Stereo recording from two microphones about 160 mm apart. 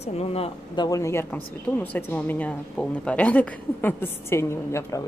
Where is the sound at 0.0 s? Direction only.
40° left (ahead or behind).